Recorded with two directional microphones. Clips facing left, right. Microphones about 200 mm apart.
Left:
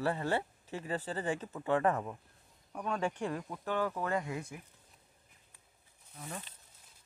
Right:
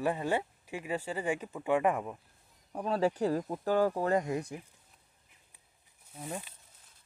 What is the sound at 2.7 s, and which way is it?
Speech, 30° right (ahead or behind).